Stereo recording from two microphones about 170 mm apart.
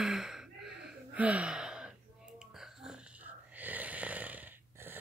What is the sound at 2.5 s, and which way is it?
Wheeze, centre (ahead or behind).